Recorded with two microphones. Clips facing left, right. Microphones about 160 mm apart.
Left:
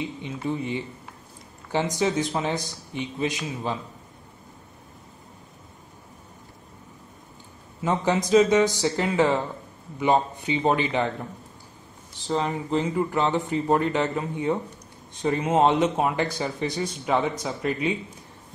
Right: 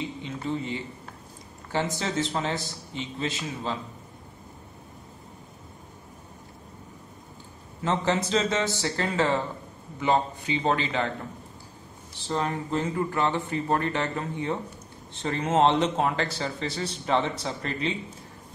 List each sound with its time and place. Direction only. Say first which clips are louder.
0.0 s a man's voice: left 2 dB; 15° left (ahead or behind)
7.8 s a man's voice: left 2 dB; 15° left (ahead or behind)
12.3 s a man's voice: left 3 dB; 10° left (ahead or behind)